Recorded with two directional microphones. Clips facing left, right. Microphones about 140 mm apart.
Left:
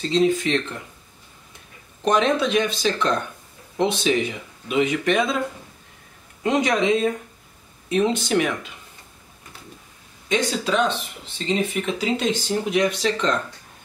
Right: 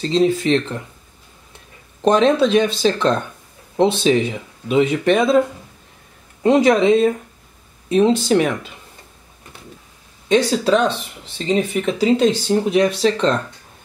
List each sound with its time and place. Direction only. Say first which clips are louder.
0.1 s speech: right 3 dB; 35° right (ahead or behind)
2.0 s speech: right 6 dB; 30° right (ahead or behind)
6.4 s speech: right 7 dB; 30° right (ahead or behind)
10.2 s speech: right 7 dB; 35° right (ahead or behind)